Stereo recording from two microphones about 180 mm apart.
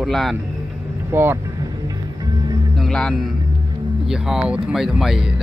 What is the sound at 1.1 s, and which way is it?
Speech, 15° right (ahead or behind).